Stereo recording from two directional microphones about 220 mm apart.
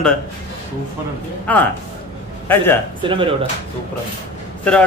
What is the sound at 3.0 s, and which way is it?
Speech, 25° right (ahead or behind).